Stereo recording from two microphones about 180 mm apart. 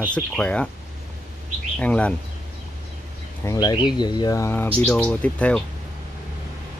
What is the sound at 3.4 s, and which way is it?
Speech, 20° left (ahead or behind).